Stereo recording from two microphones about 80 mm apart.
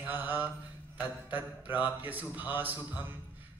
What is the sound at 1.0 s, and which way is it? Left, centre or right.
Speech, right.